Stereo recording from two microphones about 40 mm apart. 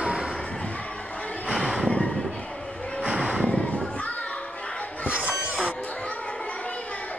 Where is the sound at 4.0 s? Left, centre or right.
Left.